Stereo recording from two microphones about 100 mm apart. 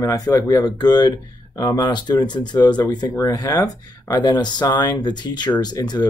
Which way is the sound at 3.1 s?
35° left (ahead or behind).